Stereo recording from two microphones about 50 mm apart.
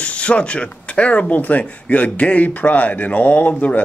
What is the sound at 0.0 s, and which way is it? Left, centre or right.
Speech, left.